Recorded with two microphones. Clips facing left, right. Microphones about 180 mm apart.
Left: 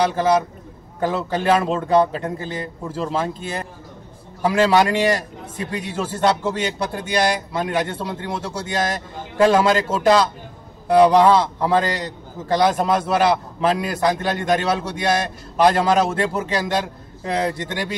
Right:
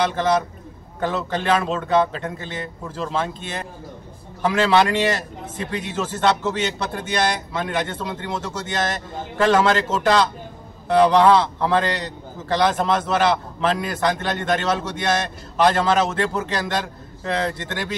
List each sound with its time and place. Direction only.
0.0 s a man's voice: 10° left (ahead or behind)
2.4 s a man's voice: 35° left (ahead or behind)
2.9 s a man's voice: 5° left (ahead or behind)